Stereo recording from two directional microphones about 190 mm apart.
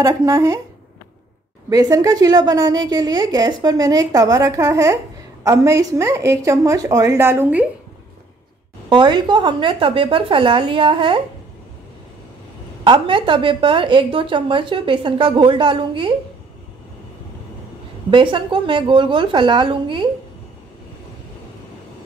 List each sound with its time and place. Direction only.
0.0 s a woman's voice: 15° right (ahead or behind)
1.7 s a woman's voice: 20° right (ahead or behind)
8.8 s a woman's voice: 25° right (ahead or behind)
12.8 s a woman's voice: 25° right (ahead or behind)
18.1 s a woman's voice: 25° right (ahead or behind)